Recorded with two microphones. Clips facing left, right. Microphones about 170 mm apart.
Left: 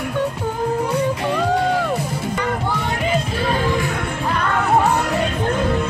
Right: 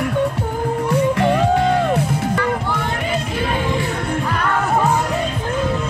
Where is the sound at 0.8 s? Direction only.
65° right (ahead or behind).